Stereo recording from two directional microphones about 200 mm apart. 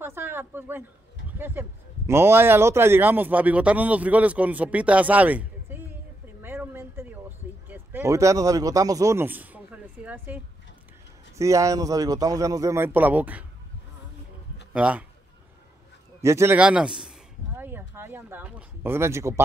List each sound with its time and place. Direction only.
0.0 s a sound: 10° right (ahead or behind)
1.4 s speech: 10° right (ahead or behind)
6.4 s a sound: 10° right (ahead or behind)
11.3 s speech: 15° right (ahead or behind)
14.7 s a man's voice: 5° right (ahead or behind)
16.2 s a man's voice: 15° right (ahead or behind)